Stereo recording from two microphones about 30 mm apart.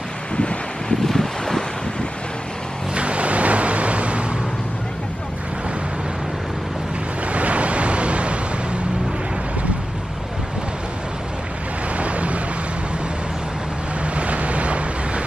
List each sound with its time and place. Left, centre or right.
0.4 s wind: left
1.0 s wind: centre
2.9 s vehicle: right
7.3 s vehicle: right
12.0 s vehicle: right
14.0 s waves: right